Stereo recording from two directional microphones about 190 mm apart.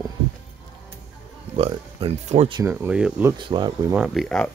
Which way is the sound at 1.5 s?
30° right (ahead or behind).